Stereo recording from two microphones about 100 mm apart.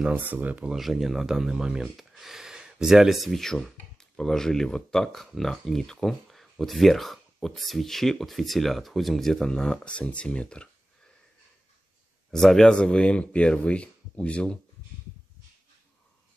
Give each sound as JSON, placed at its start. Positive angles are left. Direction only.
{"t": 0.3, "sound": "speech", "side_deg": -15}
{"t": 0.7, "sound": "speech", "side_deg": 0}
{"t": 12.3, "sound": "speech", "side_deg": 5}